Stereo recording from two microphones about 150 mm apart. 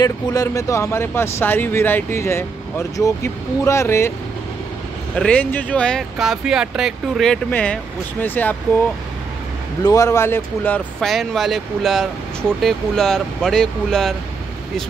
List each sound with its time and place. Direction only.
0.0 s speech: 25° left (ahead or behind)
5.1 s speech: 5° left (ahead or behind)
9.8 s speech: 20° left (ahead or behind)
11.1 s speech: centre (ahead or behind)